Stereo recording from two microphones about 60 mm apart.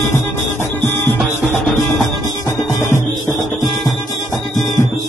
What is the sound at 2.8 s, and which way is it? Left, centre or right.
Music, left.